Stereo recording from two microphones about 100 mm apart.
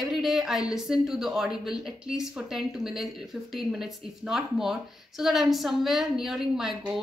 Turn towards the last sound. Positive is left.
turn(degrees=-5)  # may be behind; listen again after turning